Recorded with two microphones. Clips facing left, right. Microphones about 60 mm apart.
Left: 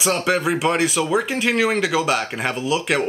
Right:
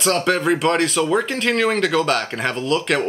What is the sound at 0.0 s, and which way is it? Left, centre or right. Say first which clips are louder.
Speech: right 1 dB; centre.